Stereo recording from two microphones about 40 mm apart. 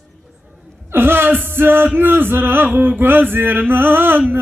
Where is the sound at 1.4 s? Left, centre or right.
Right.